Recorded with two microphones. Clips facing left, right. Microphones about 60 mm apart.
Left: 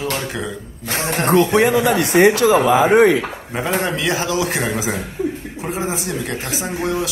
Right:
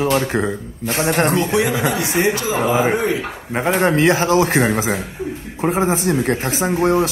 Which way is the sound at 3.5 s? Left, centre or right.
Right.